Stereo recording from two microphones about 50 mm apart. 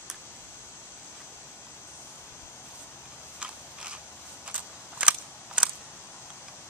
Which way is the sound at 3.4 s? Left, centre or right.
Right.